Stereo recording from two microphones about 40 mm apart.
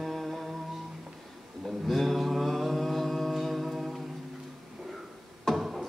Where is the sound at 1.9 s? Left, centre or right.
Centre.